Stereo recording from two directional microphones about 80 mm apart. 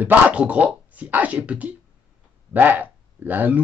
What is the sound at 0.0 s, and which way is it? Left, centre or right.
Speech, centre.